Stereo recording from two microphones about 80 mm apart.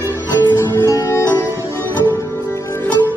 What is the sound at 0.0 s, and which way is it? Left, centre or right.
Music, left.